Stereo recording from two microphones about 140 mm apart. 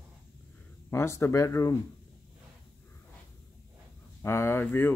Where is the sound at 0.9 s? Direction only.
20° left (ahead or behind).